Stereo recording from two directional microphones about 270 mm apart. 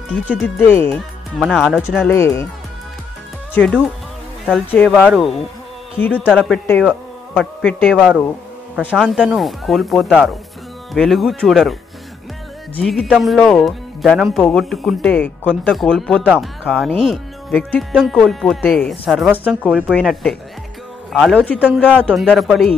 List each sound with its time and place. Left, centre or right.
0.1 s speech: centre
2.0 s speech: centre
3.5 s speech: centre
12.7 s speech: centre